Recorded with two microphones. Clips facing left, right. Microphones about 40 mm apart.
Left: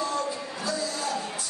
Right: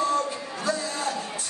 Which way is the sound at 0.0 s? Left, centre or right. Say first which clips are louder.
Right 4 dB; right.